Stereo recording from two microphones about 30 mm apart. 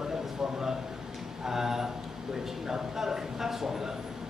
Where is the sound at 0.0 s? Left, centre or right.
Right.